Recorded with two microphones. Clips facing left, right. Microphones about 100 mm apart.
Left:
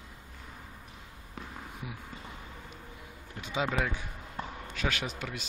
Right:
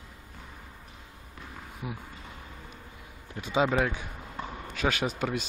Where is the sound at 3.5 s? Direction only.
30° right (ahead or behind).